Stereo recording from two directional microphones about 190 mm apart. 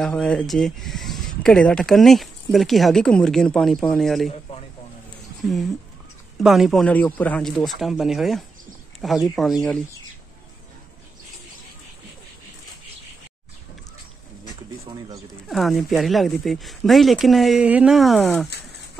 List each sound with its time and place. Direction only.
0.0 s speech: 5° left (ahead or behind)
4.3 s a sound: 30° left (ahead or behind)
6.3 s speech: centre (ahead or behind)
15.4 s speech: centre (ahead or behind)